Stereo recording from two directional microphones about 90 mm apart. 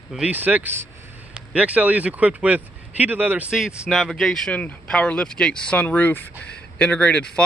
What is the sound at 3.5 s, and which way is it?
Speech, 5° right (ahead or behind).